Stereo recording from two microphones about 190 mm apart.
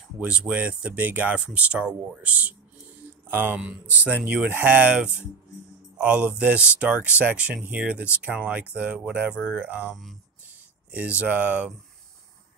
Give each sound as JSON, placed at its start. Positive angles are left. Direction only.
{"t": 0.2, "sound": "speech", "side_deg": -5}
{"t": 9.3, "sound": "speech", "side_deg": 10}
{"t": 9.6, "sound": "speech", "side_deg": -10}
{"t": 10.9, "sound": "speech", "side_deg": -5}